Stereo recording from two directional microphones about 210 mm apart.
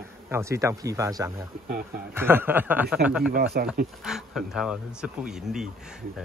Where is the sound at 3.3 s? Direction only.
45° right (ahead or behind).